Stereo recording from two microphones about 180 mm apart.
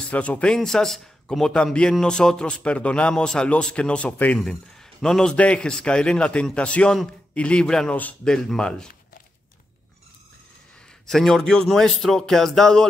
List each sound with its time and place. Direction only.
0.1 s a man's voice: 5° left (ahead or behind)
11.1 s a man's voice: centre (ahead or behind)